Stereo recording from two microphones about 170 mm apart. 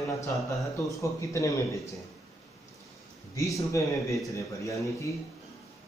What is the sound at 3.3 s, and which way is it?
A man's voice, 20° left (ahead or behind).